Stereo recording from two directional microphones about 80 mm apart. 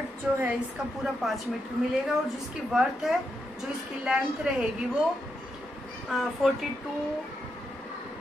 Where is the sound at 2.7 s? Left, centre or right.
Centre.